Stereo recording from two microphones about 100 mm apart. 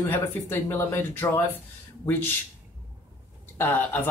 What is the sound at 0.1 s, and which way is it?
Speech, 25° left (ahead or behind).